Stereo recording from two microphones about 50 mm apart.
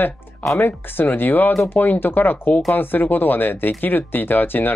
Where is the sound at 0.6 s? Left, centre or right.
Left.